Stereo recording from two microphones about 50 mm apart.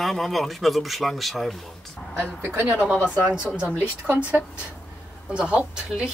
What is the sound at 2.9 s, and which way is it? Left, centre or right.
Speech, left.